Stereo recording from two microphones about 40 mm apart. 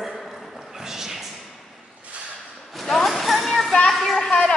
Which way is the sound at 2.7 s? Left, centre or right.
Centre.